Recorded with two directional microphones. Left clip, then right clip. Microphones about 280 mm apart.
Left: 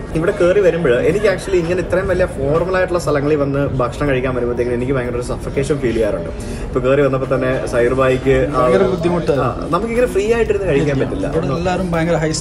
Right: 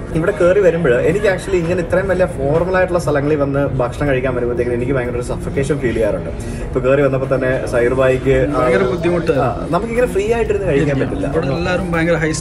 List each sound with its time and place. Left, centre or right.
0.2 s a man's voice: centre